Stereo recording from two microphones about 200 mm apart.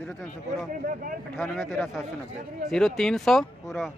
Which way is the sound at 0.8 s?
45° right (ahead or behind).